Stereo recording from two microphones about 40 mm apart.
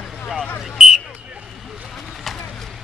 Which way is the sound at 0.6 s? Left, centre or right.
Centre.